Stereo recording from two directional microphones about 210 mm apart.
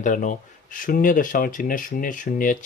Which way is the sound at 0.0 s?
35° left (ahead or behind).